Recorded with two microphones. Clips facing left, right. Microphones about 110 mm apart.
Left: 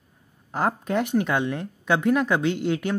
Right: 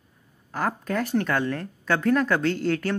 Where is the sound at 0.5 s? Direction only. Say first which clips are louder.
Left 2 dB; 20° left (ahead or behind).